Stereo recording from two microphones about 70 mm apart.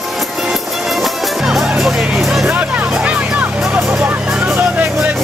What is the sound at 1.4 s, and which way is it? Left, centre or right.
Music, centre.